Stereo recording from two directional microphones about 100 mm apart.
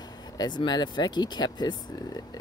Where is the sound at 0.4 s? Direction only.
45° left (ahead or behind).